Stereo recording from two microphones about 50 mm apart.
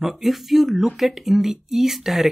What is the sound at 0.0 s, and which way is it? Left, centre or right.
Speech, centre.